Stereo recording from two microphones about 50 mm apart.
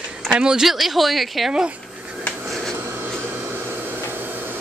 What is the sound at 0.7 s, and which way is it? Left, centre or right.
Speech, centre.